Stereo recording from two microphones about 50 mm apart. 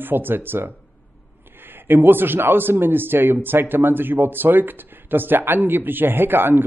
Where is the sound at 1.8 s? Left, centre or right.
Right.